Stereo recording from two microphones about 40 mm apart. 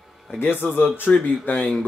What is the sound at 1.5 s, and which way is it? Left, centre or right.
Speech, left.